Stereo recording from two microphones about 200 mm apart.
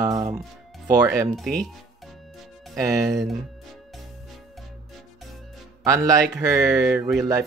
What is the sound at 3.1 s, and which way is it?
Speech, centre (ahead or behind).